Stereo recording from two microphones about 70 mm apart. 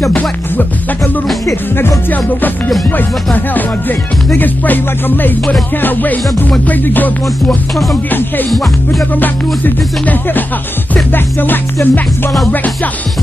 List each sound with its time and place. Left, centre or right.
0.1 s music: left
1.8 s music: left
4.4 s music: left
11.1 s music: left